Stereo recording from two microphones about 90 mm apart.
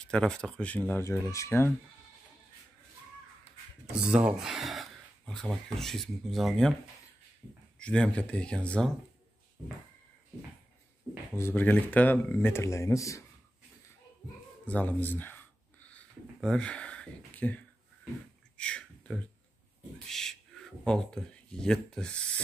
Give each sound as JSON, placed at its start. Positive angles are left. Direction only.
{"t": 0.0, "sound": "speech", "side_deg": 10}
{"t": 1.0, "sound": "speech", "side_deg": 35}
{"t": 4.1, "sound": "speech", "side_deg": -10}
{"t": 7.8, "sound": "speech", "side_deg": 10}
{"t": 11.3, "sound": "speech", "side_deg": 25}
{"t": 14.7, "sound": "a sound", "side_deg": 20}
{"t": 16.3, "sound": "speech", "side_deg": 10}
{"t": 18.6, "sound": "a sound", "side_deg": 10}
{"t": 20.1, "sound": "speech", "side_deg": 5}